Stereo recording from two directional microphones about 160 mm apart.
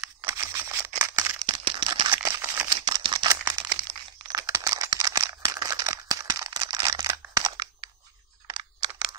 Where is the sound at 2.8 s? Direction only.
30° right (ahead or behind).